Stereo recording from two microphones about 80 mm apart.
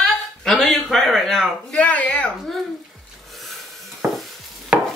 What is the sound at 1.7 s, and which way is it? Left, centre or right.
Speech, centre.